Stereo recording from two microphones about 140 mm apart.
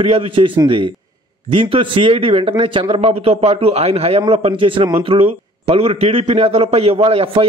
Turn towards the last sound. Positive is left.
turn(degrees=-40)  # may be behind; listen again after turning